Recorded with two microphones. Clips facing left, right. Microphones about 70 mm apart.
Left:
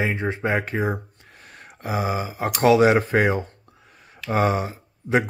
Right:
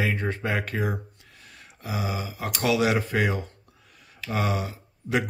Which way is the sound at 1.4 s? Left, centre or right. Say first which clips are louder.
Left 6 dB; left.